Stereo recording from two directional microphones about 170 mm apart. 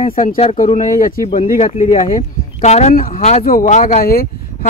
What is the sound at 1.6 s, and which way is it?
Speech, 40° left (ahead or behind).